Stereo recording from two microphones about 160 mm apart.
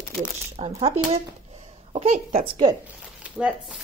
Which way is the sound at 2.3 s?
35° right (ahead or behind).